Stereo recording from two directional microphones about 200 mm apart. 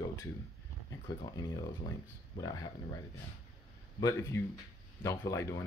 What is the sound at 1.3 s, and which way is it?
Speech, 20° left (ahead or behind).